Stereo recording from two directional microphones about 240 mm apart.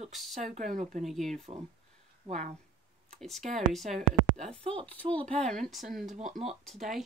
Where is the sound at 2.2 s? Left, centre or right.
Right.